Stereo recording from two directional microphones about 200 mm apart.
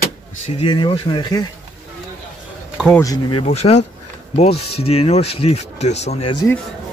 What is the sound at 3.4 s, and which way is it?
Speech, 30° left (ahead or behind).